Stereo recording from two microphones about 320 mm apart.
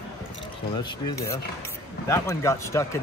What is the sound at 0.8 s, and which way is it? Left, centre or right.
Speech, centre.